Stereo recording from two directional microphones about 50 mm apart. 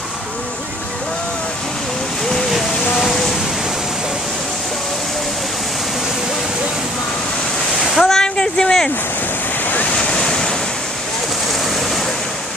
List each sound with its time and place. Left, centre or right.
3.0 s vehicle: centre
7.9 s a sound: centre
9.9 s waves: centre